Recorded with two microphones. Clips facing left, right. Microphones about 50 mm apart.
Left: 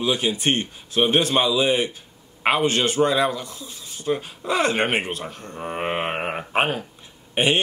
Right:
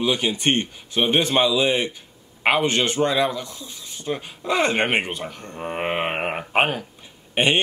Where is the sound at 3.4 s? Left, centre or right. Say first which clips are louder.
Even; left.